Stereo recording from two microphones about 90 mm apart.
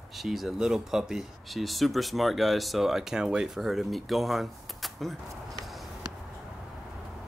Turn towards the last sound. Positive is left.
turn(degrees=0)  # may be behind; listen again after turning